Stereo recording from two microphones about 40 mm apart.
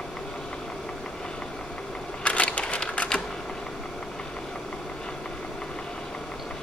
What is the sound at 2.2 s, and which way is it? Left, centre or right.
Crushing, left.